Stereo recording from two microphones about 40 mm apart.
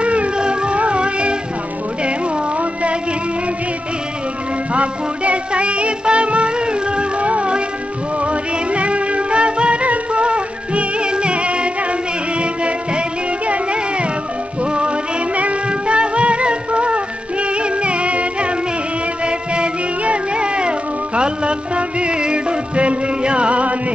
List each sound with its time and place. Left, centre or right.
0.0 s music: right
4.7 s music: right
14.6 s music: right